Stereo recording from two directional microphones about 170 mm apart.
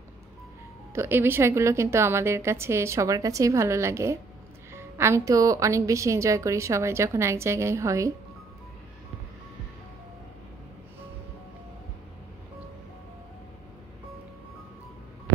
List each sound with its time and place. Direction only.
0.9 s a woman's voice: 10° right (ahead or behind)